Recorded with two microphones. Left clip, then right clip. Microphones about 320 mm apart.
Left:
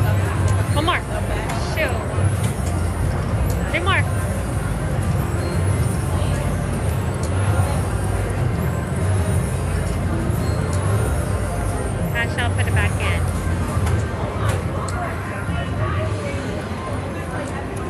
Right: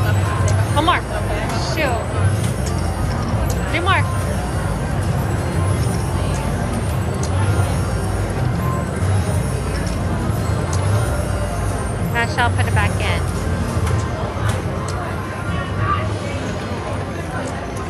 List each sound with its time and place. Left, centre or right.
0.7 s vehicle: centre
3.7 s speech: centre
12.2 s vehicle: centre